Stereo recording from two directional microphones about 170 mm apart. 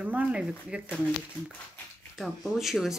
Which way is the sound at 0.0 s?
10° right (ahead or behind).